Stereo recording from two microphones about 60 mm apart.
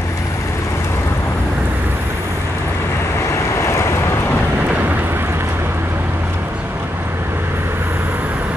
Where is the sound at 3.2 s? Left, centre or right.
Left.